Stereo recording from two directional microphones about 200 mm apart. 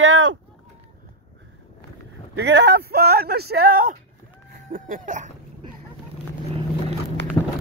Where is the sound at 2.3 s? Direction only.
60° right (ahead or behind); by 5.3 s 40° right (ahead or behind).